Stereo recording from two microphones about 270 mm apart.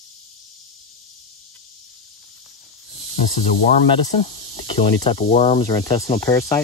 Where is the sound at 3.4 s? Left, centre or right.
Left.